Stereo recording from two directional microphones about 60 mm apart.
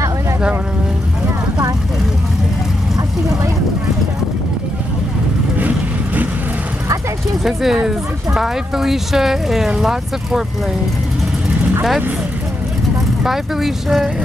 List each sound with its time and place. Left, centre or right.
5.6 s vehicle: right
7.4 s speech: centre
13.2 s speech: centre